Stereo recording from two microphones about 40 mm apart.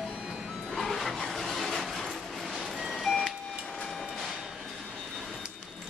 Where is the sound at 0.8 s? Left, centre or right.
Centre.